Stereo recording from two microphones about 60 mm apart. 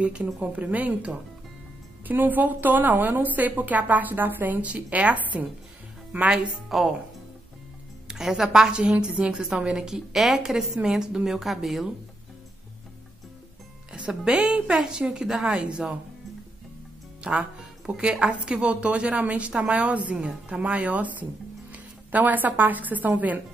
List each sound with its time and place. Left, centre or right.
0.0 s a woman's voice: right
6.3 s a woman's voice: centre
8.1 s a woman's voice: centre
13.9 s a woman's voice: centre
17.2 s a woman's voice: centre